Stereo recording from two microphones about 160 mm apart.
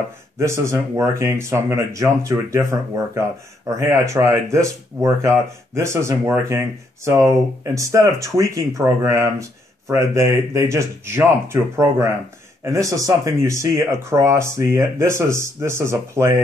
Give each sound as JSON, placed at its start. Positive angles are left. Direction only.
{"t": 0.4, "sound": "speech", "side_deg": -20}